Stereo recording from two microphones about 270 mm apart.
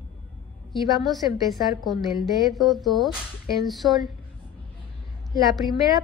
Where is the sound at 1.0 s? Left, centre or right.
Centre.